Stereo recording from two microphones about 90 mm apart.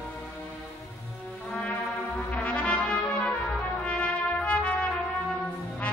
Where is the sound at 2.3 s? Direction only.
15° left (ahead or behind).